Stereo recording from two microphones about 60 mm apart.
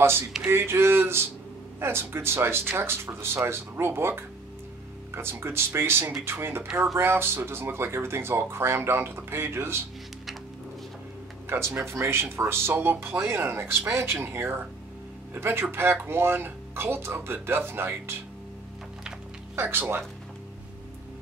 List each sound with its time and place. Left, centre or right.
0.5 s speech: right
11.4 s speech: right
19.5 s speech: right